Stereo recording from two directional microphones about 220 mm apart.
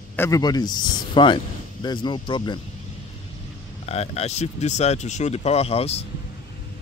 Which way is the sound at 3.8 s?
30° left (ahead or behind).